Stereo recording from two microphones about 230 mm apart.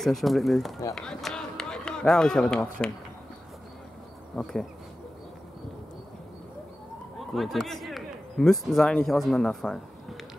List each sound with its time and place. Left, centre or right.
0.0 s speech: centre
4.4 s speech: centre
7.2 s speech: centre